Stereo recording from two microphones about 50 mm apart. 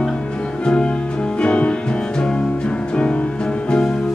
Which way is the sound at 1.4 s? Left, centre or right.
Left.